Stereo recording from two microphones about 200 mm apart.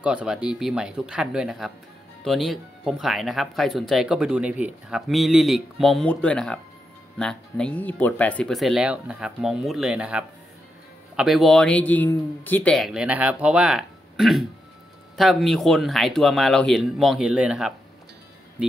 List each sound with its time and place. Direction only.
0.0 s speech: 5° right (ahead or behind)